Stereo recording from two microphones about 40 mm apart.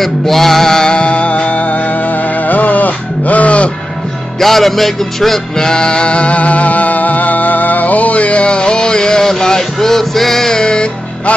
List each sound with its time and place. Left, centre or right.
0.0 s male singing: centre
0.9 s music: left
4.4 s music: centre
5.6 s music: centre